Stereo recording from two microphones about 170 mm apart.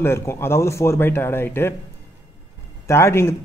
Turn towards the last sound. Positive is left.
turn(degrees=15)  # may be behind; listen again after turning